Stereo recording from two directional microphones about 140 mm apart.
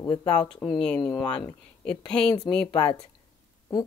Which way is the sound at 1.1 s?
30° left (ahead or behind).